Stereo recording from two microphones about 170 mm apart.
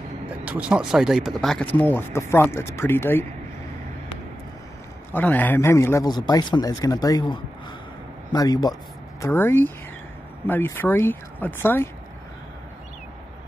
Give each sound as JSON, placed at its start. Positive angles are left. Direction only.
{"t": 0.5, "sound": "speech", "side_deg": -5}
{"t": 5.1, "sound": "a man's voice", "side_deg": 10}
{"t": 9.2, "sound": "speech", "side_deg": 15}